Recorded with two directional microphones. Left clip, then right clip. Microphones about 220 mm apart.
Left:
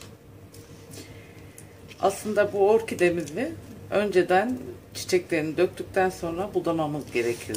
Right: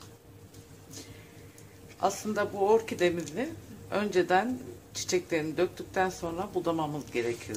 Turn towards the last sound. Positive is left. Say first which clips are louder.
# left 5 dB
turn(degrees=-25)  # may be behind; listen again after turning